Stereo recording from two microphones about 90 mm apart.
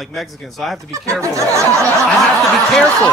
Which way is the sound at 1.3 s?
35° right (ahead or behind).